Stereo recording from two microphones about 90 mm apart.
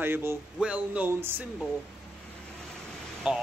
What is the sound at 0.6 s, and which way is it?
Speech, 15° right (ahead or behind).